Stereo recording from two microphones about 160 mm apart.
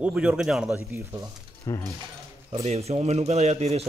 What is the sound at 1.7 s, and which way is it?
Speech, 20° left (ahead or behind).